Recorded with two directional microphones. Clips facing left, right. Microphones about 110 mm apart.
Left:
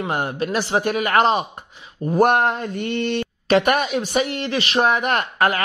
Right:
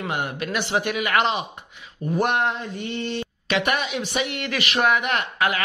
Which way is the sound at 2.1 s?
45° left (ahead or behind).